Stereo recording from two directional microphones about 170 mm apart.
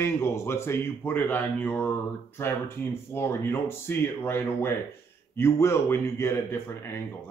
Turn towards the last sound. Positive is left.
turn(degrees=15)  # may be behind; listen again after turning